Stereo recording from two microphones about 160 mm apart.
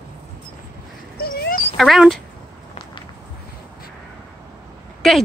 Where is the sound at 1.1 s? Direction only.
75° left (ahead or behind).